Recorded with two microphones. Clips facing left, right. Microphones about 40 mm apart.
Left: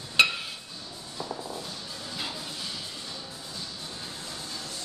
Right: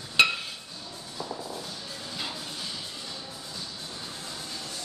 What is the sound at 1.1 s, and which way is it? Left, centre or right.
Music, centre.